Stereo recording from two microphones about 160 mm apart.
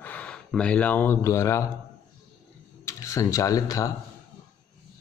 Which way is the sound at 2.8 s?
20° left (ahead or behind).